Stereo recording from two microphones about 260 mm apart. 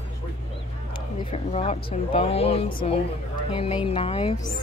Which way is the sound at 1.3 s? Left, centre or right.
Left.